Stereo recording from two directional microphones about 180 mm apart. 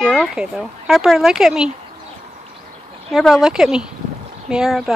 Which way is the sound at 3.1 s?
Centre (ahead or behind).